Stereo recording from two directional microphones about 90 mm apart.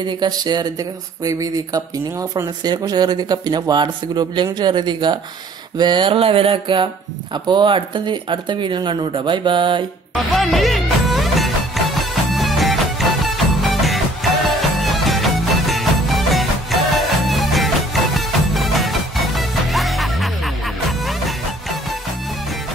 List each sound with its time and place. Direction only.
0.0 s speech: 55° right (ahead or behind); by 2.5 s 35° right (ahead or behind)
2.6 s speech: 50° right (ahead or behind)
5.8 s music: 60° right (ahead or behind)
7.3 s speech: 55° right (ahead or behind)
10.3 s music: centre (ahead or behind)